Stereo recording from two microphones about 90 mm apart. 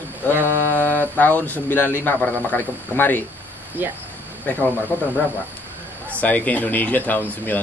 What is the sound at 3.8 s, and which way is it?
Speech, 20° right (ahead or behind).